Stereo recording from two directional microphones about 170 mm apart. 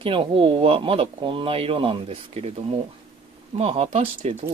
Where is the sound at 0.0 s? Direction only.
30° right (ahead or behind).